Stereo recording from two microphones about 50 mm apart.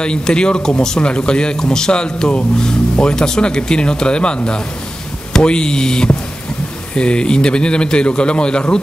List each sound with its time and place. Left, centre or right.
0.0 s a man's voice: centre